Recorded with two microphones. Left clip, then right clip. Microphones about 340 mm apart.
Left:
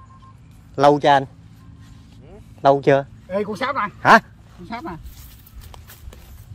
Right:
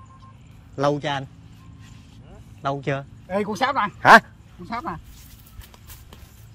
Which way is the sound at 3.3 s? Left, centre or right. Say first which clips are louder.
Even; right.